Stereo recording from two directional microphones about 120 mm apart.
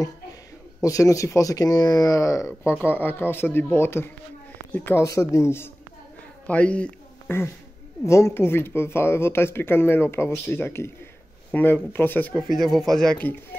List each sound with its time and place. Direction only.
0.8 s speech: 25° left (ahead or behind)
5.0 s speech: 25° left (ahead or behind)
6.4 s speech: 10° left (ahead or behind)
12.4 s speech: centre (ahead or behind)